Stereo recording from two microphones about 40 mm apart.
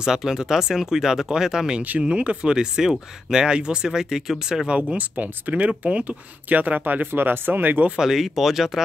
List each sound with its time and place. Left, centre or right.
0.0 s speech: centre
1.8 s speech: right; by 4.6 s centre
4.9 s speech: right
7.1 s speech: right
8.0 s speech: centre